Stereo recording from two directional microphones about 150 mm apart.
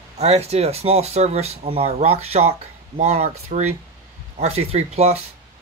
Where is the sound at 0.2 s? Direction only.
45° right (ahead or behind).